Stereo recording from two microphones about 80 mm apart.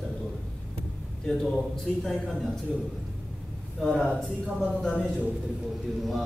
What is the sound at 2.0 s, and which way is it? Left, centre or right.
Speech, centre.